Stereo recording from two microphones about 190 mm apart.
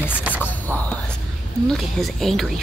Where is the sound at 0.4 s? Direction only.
10° left (ahead or behind).